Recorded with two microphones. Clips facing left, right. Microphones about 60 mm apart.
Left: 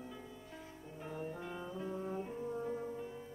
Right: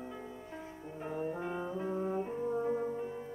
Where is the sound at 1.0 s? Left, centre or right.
Right.